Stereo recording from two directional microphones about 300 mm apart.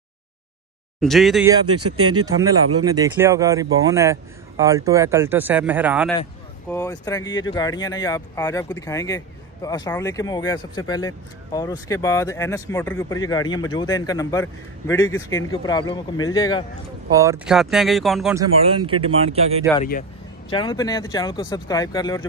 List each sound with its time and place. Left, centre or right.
1.0 s speech: centre
1.7 s speech: right
2.4 s speech: centre
6.7 s a man's voice: centre
17.1 s speech: centre
19.8 s a man's voice: left